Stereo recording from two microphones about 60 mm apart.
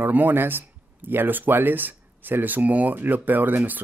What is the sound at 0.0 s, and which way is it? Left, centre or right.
Speech, right.